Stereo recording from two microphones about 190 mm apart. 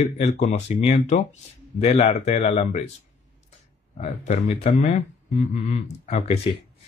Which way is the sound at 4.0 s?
35° left (ahead or behind).